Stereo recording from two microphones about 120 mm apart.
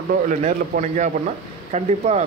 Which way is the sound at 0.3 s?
85° right.